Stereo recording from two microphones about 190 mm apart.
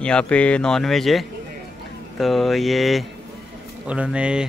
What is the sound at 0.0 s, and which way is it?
Speech, 5° left (ahead or behind).